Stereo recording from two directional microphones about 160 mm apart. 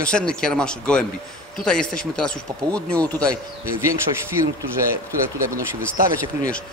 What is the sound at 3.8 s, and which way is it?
Speech, 15° right (ahead or behind).